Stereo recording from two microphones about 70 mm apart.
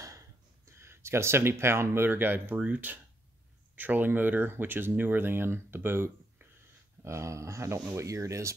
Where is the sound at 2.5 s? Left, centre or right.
Centre.